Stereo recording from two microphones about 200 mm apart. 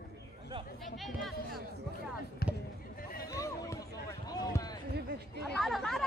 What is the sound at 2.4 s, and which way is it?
Basketball bounce, 50° left (ahead or behind).